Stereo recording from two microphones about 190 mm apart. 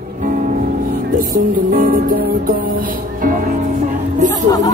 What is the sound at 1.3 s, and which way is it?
Music, 45° right (ahead or behind).